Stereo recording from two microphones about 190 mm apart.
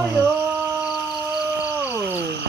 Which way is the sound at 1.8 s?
10° right (ahead or behind).